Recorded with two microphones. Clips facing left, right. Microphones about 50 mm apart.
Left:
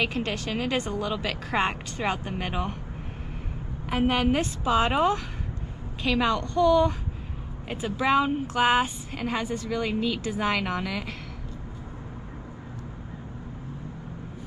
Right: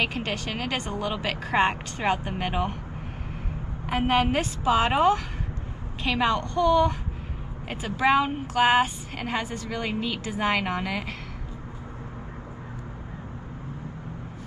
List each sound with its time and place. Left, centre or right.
0.0 s speech: right
1.1 s speech: centre
3.8 s a woman's voice: centre; by 7.0 s right
8.0 s a woman's voice: centre